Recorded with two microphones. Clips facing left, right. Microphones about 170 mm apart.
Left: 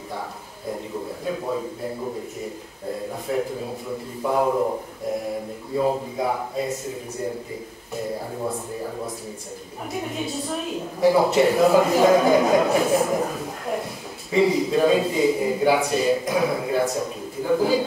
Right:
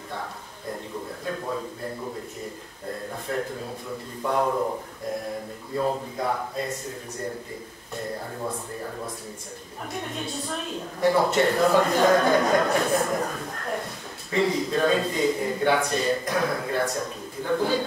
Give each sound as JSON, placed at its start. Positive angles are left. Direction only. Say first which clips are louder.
{"t": 1.2, "sound": "speech", "louder": "left 4 dB", "side_deg": 10}
{"t": 3.3, "sound": "speech", "louder": "left 4 dB", "side_deg": 10}
{"t": 5.8, "sound": "speech", "louder": "left 4 dB", "side_deg": 10}
{"t": 7.9, "sound": "a woman's voice", "louder": "left 4 dB", "side_deg": 5}
{"t": 9.9, "sound": "a woman's voice", "louder": "left 4 dB", "side_deg": 5}